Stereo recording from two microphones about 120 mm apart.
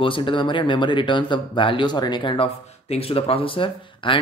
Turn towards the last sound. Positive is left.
turn(degrees=45)  # may be behind; listen again after turning